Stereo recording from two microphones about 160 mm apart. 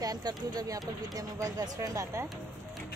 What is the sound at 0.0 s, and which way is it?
Speech, 25° right (ahead or behind).